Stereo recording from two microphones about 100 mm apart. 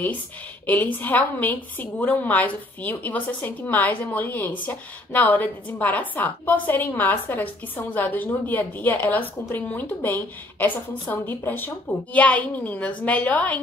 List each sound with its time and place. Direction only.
0.7 s a woman's voice: 15° left (ahead or behind)